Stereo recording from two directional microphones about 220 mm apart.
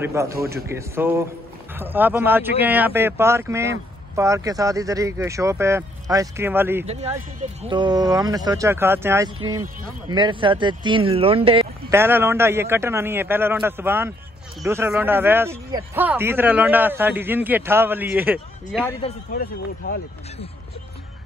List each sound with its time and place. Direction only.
0.0 s a man's voice: 15° right (ahead or behind)
7.6 s a man's voice: 20° right (ahead or behind)
10.1 s speech: 20° right (ahead or behind)
11.9 s a man's voice: 10° right (ahead or behind)
18.9 s speech: 25° left (ahead or behind)